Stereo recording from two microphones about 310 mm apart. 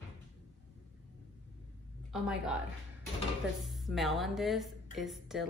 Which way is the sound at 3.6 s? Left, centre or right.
Centre.